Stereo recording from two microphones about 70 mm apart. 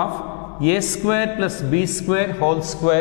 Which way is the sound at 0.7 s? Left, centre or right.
Centre.